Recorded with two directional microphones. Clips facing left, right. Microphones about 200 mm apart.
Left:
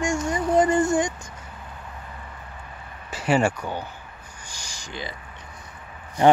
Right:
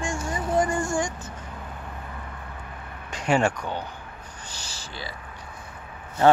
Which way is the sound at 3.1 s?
5° left (ahead or behind).